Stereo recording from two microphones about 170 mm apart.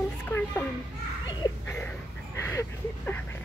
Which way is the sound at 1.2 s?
25° left (ahead or behind).